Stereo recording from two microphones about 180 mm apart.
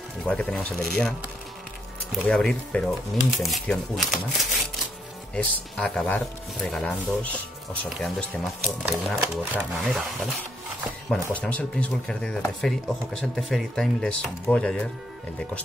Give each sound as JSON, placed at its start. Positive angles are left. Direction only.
{"t": 0.3, "sound": "speech", "side_deg": 5}
{"t": 2.2, "sound": "speech", "side_deg": 5}
{"t": 11.1, "sound": "speech", "side_deg": 5}